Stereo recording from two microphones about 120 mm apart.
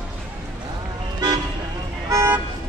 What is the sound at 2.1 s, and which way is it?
Vehicle, 20° right (ahead or behind).